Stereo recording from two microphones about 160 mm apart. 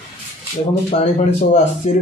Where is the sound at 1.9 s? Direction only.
45° left (ahead or behind).